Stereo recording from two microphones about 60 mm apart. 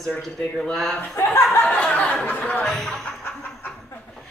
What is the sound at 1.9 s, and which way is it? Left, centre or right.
Speech, centre.